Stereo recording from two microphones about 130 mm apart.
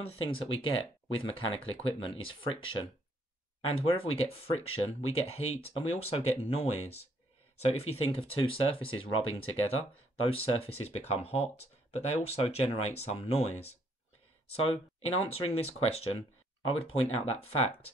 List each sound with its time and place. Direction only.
0.0 s speech: 45° left (ahead or behind)
14.5 s speech: 50° left (ahead or behind)